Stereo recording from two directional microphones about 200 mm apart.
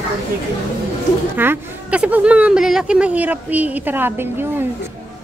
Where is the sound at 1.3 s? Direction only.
10° right (ahead or behind).